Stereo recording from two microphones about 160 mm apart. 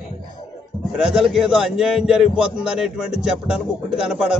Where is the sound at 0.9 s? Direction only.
Centre (ahead or behind).